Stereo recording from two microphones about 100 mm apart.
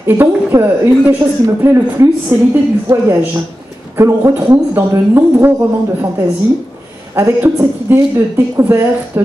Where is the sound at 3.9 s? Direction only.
30° right (ahead or behind).